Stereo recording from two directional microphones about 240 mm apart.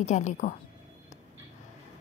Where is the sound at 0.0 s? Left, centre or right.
Left.